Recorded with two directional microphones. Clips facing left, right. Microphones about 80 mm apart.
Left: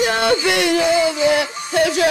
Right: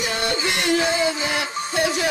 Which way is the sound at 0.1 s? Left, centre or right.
Left.